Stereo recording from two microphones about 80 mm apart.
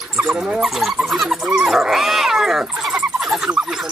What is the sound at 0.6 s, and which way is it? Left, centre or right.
Dog, centre.